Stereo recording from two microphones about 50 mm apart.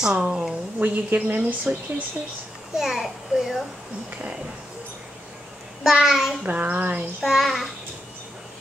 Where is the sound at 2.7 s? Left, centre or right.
Centre.